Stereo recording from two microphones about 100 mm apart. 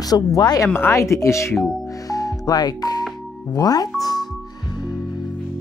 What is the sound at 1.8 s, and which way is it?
Music, 40° left (ahead or behind).